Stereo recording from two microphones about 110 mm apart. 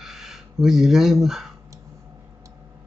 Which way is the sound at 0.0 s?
5° right (ahead or behind).